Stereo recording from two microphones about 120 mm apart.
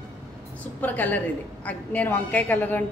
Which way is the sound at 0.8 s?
15° left (ahead or behind).